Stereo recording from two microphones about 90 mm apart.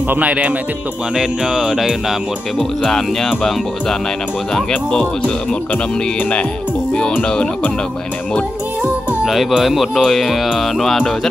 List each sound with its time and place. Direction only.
0.1 s music: 15° right (ahead or behind)
2.8 s speech: 5° left (ahead or behind)
7.0 s speech: 15° left (ahead or behind)
9.2 s speech: centre (ahead or behind)